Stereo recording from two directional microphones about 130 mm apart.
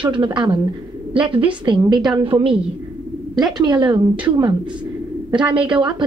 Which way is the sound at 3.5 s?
35° right (ahead or behind).